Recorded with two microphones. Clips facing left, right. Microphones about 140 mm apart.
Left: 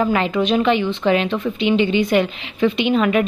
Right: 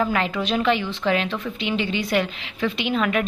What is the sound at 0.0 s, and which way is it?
A woman's voice, 5° left (ahead or behind).